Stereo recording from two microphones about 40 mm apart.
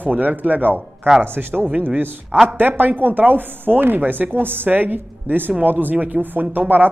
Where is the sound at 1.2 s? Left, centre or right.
Right.